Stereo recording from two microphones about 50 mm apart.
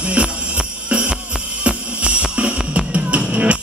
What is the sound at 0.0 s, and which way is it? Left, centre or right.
Music, right.